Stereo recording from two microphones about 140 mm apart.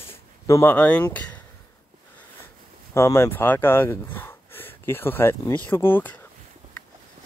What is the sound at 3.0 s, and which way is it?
Speech, 20° left (ahead or behind).